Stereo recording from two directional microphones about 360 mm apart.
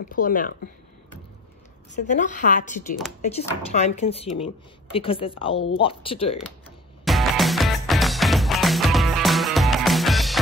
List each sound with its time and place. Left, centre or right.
0.0 s a woman's voice: left
2.0 s a woman's voice: left
7.1 s music: centre